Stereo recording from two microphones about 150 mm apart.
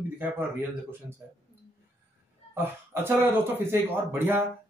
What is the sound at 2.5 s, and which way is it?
Speech, 15° right (ahead or behind).